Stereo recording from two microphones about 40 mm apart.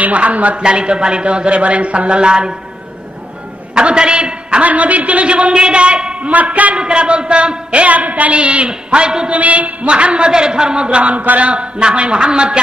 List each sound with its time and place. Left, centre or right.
0.0 s a woman's voice: right
0.6 s a man's voice: right
3.7 s a sound: right
4.6 s a woman's voice: right
6.2 s a woman's voice: right
6.8 s a woman's voice: right
9.3 s a woman's voice: right